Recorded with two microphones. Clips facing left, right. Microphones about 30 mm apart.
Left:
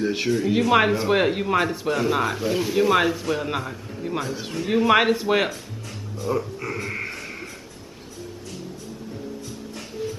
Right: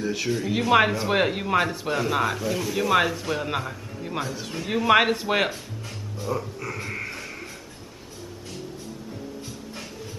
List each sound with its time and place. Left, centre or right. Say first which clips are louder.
0.0 s speech: left 4 dB; left
0.3 s speech: left 2 dB; centre
2.4 s speech: left 3 dB; centre
2.7 s speech: left 2 dB; centre
4.3 s a man's voice: left 3 dB; centre
4.6 s speech: left 1 dB; centre
6.2 s speech: left 4 dB; centre